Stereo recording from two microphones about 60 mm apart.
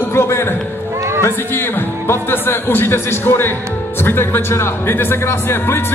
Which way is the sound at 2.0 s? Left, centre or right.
Left.